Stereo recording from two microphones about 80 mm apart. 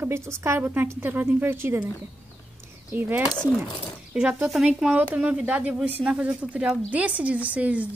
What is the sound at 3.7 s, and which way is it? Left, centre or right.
Speech, left.